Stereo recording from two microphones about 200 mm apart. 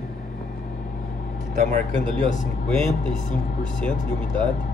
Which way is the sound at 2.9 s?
35° left (ahead or behind).